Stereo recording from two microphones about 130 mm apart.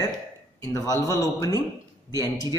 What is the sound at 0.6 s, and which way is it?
Speech, 30° left (ahead or behind).